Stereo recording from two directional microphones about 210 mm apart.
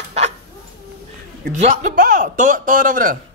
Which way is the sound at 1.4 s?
35° right (ahead or behind).